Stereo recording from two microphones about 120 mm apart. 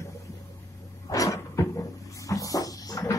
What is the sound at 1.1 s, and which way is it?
Cupboard open or close, 25° left (ahead or behind).